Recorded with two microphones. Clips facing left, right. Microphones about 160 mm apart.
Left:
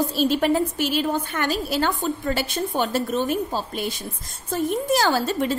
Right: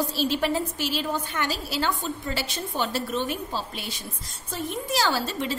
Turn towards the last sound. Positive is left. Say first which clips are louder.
# left 5 dB
turn(degrees=50)  # may be behind; listen again after turning